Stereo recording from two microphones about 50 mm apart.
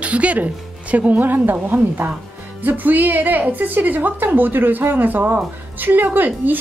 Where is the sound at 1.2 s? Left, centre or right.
Right.